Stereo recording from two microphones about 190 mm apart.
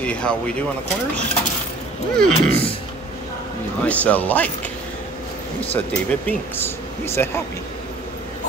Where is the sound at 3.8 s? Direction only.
10° left (ahead or behind).